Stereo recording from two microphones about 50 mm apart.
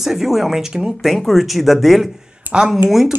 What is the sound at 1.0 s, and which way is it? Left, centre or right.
Speech, centre.